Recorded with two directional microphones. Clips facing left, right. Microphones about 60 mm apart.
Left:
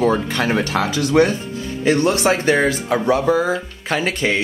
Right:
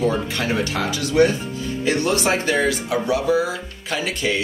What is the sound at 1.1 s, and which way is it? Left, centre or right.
Speech, left.